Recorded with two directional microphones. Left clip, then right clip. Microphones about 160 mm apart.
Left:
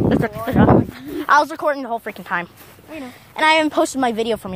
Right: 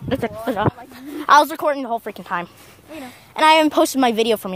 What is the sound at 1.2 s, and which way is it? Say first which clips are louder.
A woman's voice: right 2 dB; 45° right (ahead or behind).